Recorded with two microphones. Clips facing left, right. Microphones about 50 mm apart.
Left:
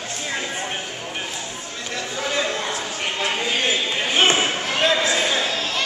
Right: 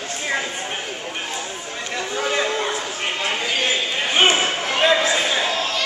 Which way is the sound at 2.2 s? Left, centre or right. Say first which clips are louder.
Right 2 dB; centre.